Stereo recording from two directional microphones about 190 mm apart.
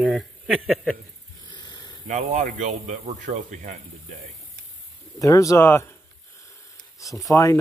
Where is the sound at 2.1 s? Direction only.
40° right (ahead or behind).